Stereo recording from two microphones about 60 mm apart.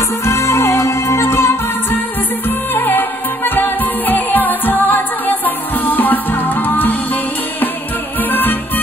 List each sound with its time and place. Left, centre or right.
0.2 s music: left
8.2 s music: left